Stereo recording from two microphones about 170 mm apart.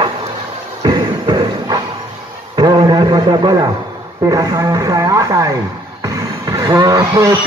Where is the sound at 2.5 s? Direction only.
25° right (ahead or behind).